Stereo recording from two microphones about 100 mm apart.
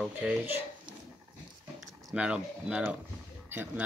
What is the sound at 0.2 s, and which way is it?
Speech, 10° right (ahead or behind).